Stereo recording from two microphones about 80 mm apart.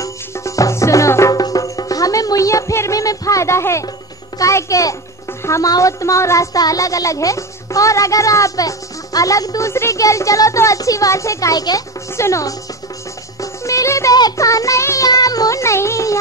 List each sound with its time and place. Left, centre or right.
0.0 s music: left
1.3 s music: left
4.4 s a child's voice: left
9.7 s speech: left
12.2 s music: left
15.0 s speech: left